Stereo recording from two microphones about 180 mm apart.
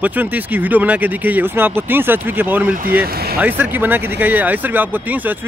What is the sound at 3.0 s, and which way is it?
Speech, 60° right (ahead or behind).